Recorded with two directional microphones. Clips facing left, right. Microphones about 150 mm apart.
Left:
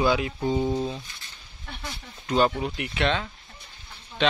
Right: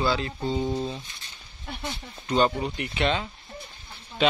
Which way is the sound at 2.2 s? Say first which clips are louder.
Even; 5° left (ahead or behind).